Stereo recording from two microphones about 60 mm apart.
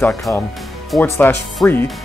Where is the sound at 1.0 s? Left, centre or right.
Left.